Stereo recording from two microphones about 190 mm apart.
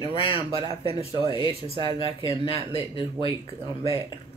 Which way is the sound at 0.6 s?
30° right (ahead or behind).